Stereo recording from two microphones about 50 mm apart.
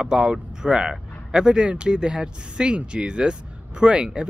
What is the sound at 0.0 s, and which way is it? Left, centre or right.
Speech, centre.